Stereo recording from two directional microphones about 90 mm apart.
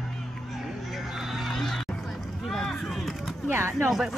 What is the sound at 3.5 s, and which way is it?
Speech, 30° right (ahead or behind).